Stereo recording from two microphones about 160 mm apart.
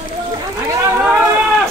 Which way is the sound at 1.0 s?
5° right (ahead or behind).